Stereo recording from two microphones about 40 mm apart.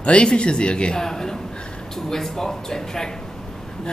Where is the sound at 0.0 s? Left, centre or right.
Left.